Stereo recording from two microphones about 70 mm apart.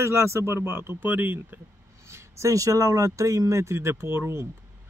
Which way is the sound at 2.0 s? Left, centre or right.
Right.